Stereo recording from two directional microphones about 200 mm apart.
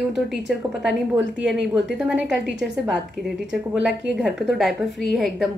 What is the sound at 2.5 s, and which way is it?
Speech, 60° right (ahead or behind).